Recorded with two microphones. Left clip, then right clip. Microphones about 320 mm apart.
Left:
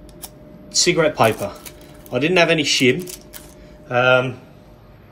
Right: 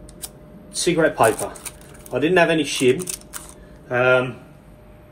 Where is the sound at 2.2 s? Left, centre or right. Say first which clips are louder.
Left 1 dB; centre.